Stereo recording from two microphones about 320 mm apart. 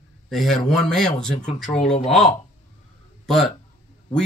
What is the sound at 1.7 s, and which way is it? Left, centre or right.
Speech, left.